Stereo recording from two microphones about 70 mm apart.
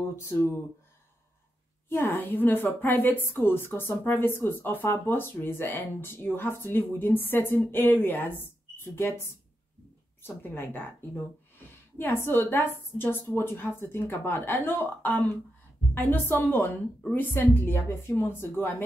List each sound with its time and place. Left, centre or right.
0.1 s a woman's voice: left
1.9 s a woman's voice: left